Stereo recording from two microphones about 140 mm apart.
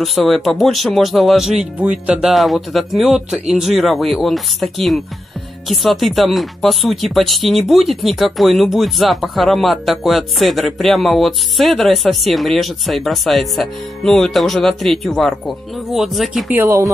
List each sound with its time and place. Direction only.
0.0 s speech: centre (ahead or behind)
16.5 s speech: 20° right (ahead or behind)